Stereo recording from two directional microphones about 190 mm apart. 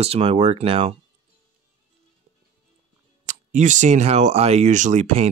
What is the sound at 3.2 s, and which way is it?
Speech, 40° right (ahead or behind).